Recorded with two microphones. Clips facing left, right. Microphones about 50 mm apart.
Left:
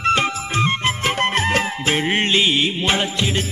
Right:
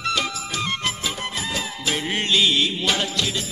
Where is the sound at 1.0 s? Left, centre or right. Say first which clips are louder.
Left 9 dB; left.